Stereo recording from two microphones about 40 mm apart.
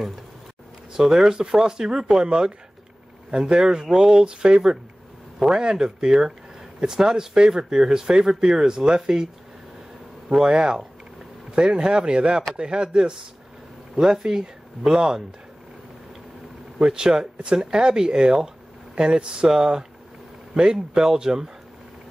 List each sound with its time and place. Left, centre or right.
0.9 s speech: centre
10.4 s speech: centre
16.7 s speech: centre